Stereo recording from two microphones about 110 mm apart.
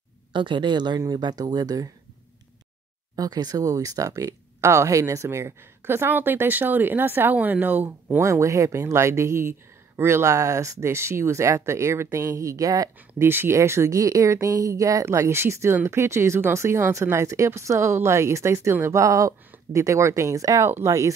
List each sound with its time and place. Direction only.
0.3 s speech: 50° right (ahead or behind)
3.2 s speech: 35° right (ahead or behind); by 8.2 s 15° right (ahead or behind)
8.2 s speech: 25° right (ahead or behind)